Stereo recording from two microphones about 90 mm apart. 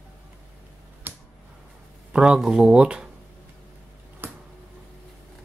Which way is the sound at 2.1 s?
10° right (ahead or behind).